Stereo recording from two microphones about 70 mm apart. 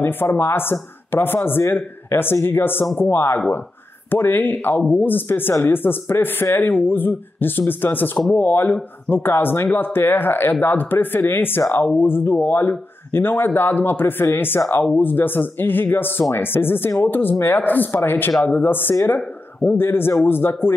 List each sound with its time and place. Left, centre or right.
0.0 s speech: left